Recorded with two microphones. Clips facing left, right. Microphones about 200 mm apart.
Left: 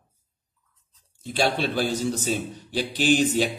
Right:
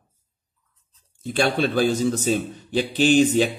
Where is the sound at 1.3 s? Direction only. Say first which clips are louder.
Right 3 dB; 55° right (ahead or behind).